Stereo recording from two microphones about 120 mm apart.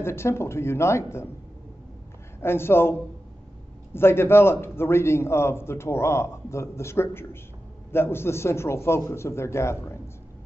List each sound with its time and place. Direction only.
0.0 s a man's voice: 20° left (ahead or behind)
2.4 s a man's voice: 20° left (ahead or behind)